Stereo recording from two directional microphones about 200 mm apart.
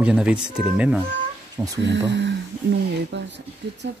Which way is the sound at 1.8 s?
60° right (ahead or behind).